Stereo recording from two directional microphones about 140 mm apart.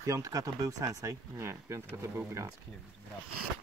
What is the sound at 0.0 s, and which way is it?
Speech, 25° right (ahead or behind).